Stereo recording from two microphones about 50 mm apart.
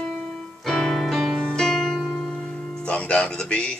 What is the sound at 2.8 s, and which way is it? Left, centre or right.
Speech, left.